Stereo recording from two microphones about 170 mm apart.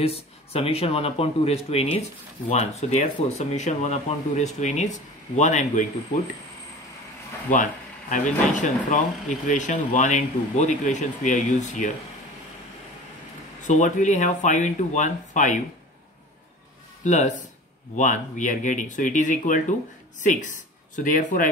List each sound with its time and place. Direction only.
0.0 s speech: 35° left (ahead or behind)
7.5 s speech: 50° left (ahead or behind)
13.7 s speech: 45° left (ahead or behind)
17.0 s speech: 45° left (ahead or behind)